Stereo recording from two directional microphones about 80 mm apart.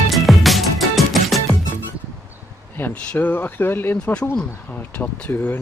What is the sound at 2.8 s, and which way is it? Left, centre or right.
Speech, left.